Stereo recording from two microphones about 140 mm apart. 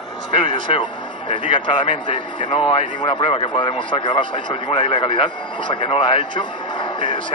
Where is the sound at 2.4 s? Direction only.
35° left (ahead or behind).